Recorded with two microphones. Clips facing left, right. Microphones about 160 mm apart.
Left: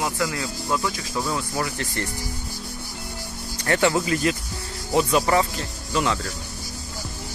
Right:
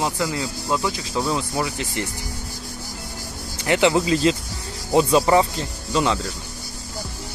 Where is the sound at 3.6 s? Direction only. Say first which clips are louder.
Right 3 dB; 20° right (ahead or behind).